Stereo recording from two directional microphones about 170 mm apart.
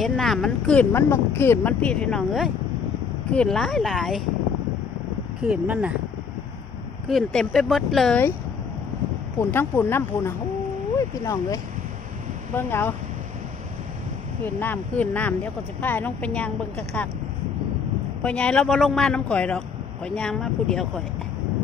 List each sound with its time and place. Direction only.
0.0 s speech: centre (ahead or behind)
5.4 s speech: 5° right (ahead or behind)
7.1 s speech: centre (ahead or behind)
9.4 s speech: 15° left (ahead or behind)
14.4 s speech: 10° left (ahead or behind)
18.2 s speech: 5° left (ahead or behind)